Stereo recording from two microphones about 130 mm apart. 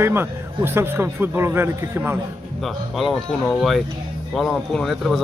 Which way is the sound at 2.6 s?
Centre (ahead or behind).